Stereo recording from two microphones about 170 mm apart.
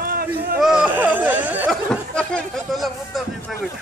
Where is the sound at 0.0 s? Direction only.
60° right (ahead or behind).